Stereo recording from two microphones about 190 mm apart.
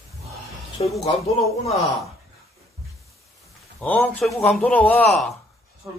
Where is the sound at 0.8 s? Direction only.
30° left (ahead or behind).